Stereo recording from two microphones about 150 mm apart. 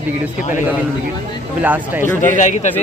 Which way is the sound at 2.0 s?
15° left (ahead or behind).